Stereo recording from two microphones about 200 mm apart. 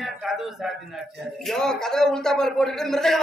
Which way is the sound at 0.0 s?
Centre (ahead or behind).